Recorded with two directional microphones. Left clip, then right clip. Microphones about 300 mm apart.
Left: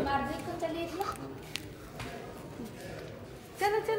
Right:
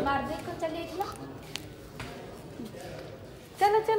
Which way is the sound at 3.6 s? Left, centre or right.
Right.